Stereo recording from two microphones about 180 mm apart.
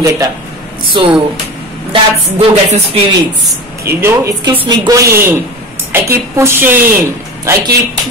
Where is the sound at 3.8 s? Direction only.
15° right (ahead or behind).